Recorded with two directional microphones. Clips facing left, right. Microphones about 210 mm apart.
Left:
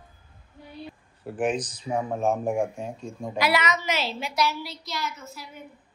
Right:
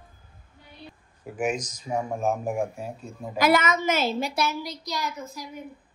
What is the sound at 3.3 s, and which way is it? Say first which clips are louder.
A woman's voice: right 4 dB; 45° right (ahead or behind).